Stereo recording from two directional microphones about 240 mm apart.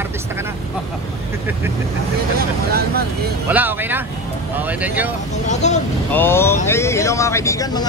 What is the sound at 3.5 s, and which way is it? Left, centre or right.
Speech, centre.